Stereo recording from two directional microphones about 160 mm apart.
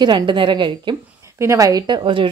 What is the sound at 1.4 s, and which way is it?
Speech, 20° right (ahead or behind).